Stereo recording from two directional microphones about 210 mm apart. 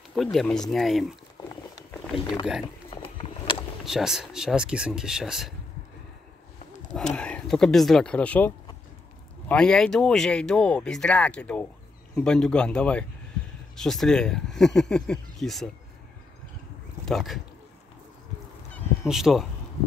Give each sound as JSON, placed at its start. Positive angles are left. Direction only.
{"t": 0.1, "sound": "speech", "side_deg": 0}
{"t": 2.9, "sound": "a sound", "side_deg": 25}
{"t": 3.8, "sound": "speech", "side_deg": 0}
{"t": 7.2, "sound": "speech", "side_deg": 5}
{"t": 17.0, "sound": "speech", "side_deg": 0}
{"t": 18.7, "sound": "goose", "side_deg": 0}